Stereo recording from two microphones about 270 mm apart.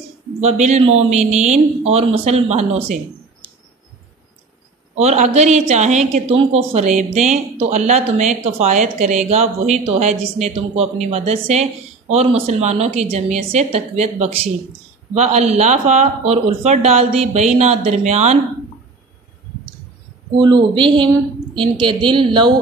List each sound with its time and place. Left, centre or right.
0.4 s a woman's voice: right
4.9 s a woman's voice: right
20.3 s a woman's voice: centre